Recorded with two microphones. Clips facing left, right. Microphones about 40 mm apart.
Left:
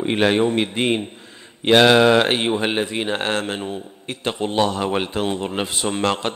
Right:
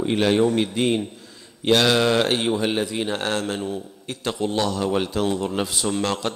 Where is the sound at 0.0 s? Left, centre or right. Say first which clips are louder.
Left 1 dB; left.